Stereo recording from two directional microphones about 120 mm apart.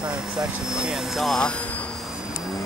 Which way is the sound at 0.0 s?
5° right (ahead or behind).